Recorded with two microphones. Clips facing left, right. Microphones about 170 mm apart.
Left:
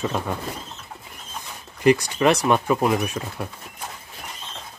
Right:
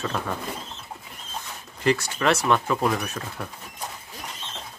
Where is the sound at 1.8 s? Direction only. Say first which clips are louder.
Left 5 dB; 15° left (ahead or behind).